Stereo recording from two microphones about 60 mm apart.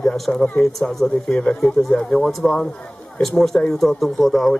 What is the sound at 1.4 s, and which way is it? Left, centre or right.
Speech, centre.